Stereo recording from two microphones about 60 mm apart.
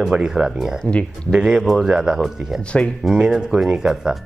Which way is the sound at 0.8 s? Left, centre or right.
Centre.